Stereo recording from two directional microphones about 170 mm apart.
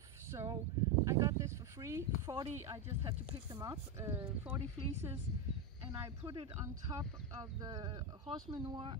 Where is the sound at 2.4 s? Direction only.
40° right (ahead or behind).